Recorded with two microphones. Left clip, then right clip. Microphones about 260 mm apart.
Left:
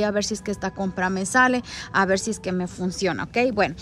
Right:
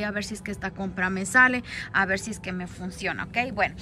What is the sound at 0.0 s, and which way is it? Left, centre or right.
Speech, centre.